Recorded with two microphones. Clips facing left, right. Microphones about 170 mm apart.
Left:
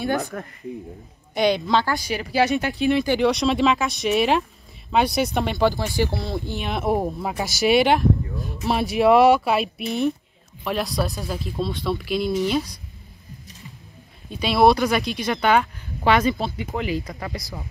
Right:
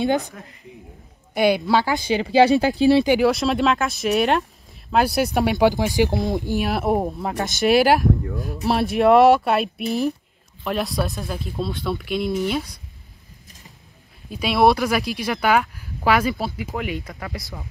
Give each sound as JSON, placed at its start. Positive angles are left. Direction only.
{"t": 0.2, "sound": "speech", "side_deg": 65}
{"t": 1.3, "sound": "a woman's voice", "side_deg": -5}
{"t": 2.0, "sound": "speech", "side_deg": -25}
{"t": 3.1, "sound": "speech", "side_deg": -5}
{"t": 14.3, "sound": "speech", "side_deg": 0}